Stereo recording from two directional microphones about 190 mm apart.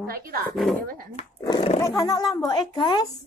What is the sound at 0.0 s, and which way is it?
Speech, 50° right (ahead or behind).